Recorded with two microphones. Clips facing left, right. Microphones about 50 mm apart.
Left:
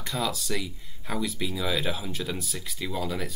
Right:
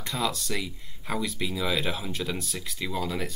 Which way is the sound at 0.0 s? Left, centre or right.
Centre.